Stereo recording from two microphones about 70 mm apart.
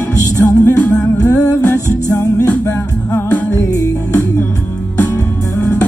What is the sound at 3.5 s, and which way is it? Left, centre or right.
Music, left.